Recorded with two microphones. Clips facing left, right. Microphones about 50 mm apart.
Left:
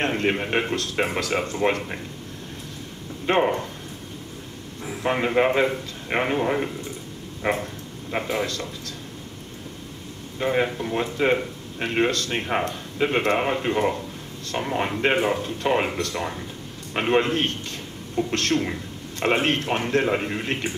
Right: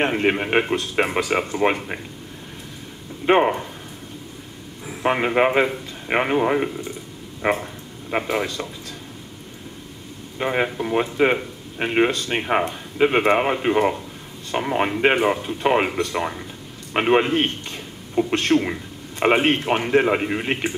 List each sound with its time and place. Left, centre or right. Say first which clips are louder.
0.0 s a man's voice: right 3 dB; centre
3.3 s a man's voice: right 4 dB; centre
5.0 s a man's voice: right 2 dB; right
10.4 s a man's voice: right 1 dB; centre